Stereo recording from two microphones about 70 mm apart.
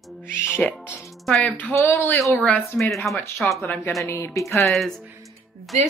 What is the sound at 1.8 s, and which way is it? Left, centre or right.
Speech, left.